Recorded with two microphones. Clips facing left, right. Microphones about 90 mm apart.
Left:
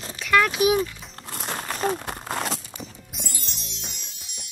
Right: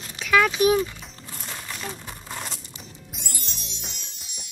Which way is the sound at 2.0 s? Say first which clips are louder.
Left 7 dB; 70° left (ahead or behind).